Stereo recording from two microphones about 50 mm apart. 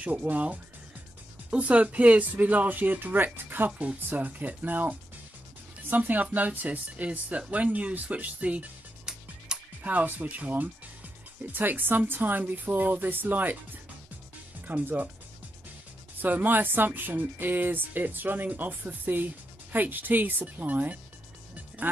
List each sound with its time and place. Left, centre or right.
0.0 s speech: right
9.5 s music: centre
9.8 s speech: right
14.7 s speech: right
16.2 s speech: right